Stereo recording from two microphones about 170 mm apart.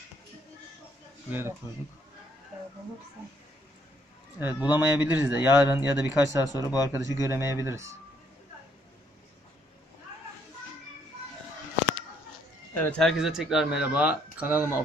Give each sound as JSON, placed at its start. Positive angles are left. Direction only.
{"t": 4.4, "sound": "a man's voice", "side_deg": -10}
{"t": 6.4, "sound": "speech", "side_deg": 20}
{"t": 6.9, "sound": "a man's voice", "side_deg": -15}
{"t": 12.7, "sound": "speech", "side_deg": 10}